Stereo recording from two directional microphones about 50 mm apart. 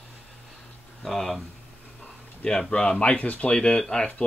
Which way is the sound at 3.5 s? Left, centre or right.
Centre.